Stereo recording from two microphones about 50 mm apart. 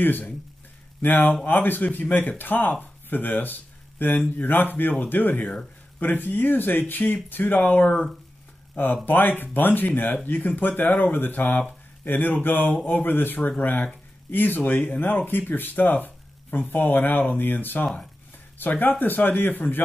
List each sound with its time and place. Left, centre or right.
0.0 s speech: left